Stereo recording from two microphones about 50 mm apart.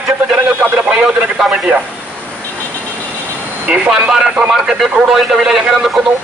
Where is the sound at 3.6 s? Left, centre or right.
Right; by 6.0 s centre.